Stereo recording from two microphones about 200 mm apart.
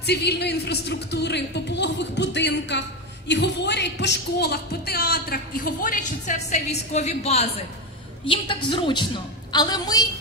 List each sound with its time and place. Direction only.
0.0 s a woman's voice: 55° left (ahead or behind); by 10.0 s 20° left (ahead or behind)